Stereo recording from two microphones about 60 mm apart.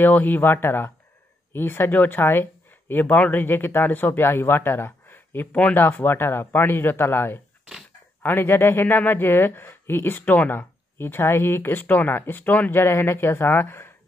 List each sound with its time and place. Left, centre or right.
0.0 s a man's voice: left
12.7 s a man's voice: left